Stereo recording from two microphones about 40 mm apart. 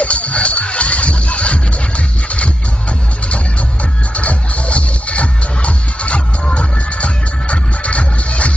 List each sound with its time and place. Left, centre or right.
0.0 s music: left
4.1 s music: left